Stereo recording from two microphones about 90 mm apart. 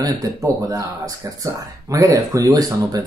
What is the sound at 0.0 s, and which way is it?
Speech, 40° right (ahead or behind).